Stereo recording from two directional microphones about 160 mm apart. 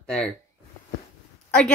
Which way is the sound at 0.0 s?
5° left (ahead or behind).